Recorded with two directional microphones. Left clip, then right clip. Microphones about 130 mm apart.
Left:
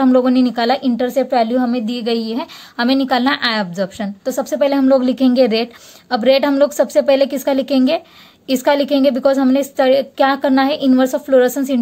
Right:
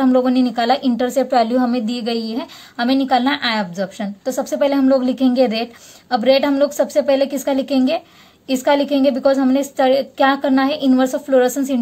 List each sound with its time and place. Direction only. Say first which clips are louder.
0.0 s a woman's voice: left 2 dB; 30° left (ahead or behind)